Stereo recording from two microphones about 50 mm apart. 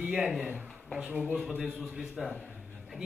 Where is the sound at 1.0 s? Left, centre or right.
Centre.